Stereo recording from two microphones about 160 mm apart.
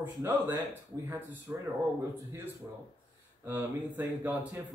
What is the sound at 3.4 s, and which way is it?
Speech, 10° right (ahead or behind).